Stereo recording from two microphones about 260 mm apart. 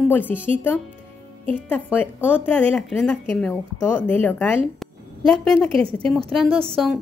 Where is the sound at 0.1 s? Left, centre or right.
Centre.